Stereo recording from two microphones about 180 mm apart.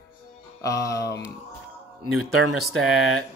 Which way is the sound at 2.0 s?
Centre (ahead or behind).